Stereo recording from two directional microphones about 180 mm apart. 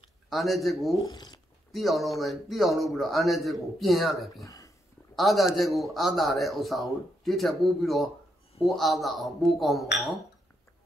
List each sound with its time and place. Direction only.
0.3 s a man's voice: centre (ahead or behind)
1.0 s speech: 20° left (ahead or behind)
1.7 s a man's voice: centre (ahead or behind)
4.5 s a sound: 20° left (ahead or behind)
5.1 s a man's voice: centre (ahead or behind)